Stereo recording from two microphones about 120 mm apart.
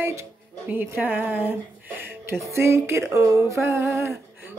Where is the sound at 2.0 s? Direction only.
20° right (ahead or behind).